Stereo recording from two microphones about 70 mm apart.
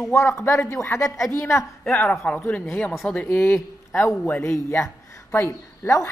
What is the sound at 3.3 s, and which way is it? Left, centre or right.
Speech, left.